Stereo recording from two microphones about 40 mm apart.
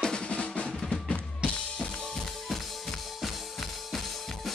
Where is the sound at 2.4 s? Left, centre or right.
Centre.